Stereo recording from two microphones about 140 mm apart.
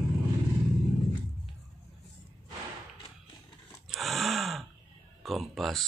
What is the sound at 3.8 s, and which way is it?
Dog, centre (ahead or behind).